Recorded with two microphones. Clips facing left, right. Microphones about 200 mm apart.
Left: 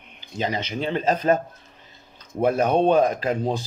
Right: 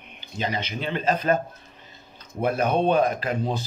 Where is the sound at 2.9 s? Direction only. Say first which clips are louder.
Left 3 dB; 40° left (ahead or behind).